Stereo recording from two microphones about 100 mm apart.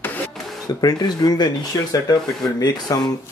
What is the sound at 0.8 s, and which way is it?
Speech, 40° left (ahead or behind).